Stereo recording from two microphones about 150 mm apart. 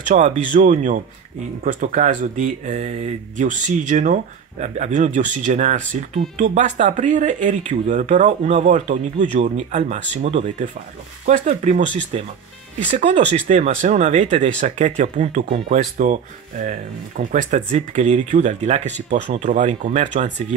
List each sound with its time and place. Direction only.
0.1 s speech: 55° right (ahead or behind)